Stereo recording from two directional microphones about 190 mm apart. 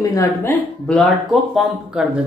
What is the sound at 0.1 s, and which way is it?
Speech, 10° left (ahead or behind).